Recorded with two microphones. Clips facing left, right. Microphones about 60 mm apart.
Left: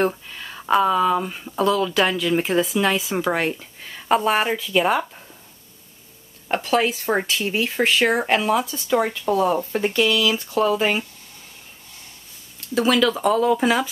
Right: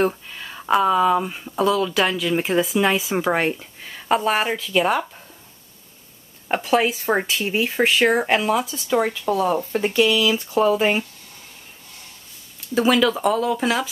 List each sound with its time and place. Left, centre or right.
0.0 s speech: centre
6.5 s speech: centre
12.5 s speech: centre